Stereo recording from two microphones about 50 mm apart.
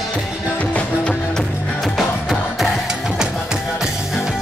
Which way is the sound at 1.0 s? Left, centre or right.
Centre.